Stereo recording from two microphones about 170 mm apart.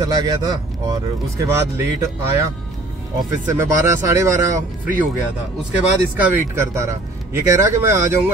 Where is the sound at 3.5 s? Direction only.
15° right (ahead or behind).